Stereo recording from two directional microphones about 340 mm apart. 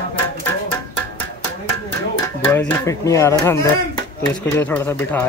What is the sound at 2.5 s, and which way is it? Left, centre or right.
Speech, centre.